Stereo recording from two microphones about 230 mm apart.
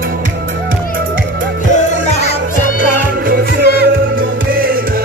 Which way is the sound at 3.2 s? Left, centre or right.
Right.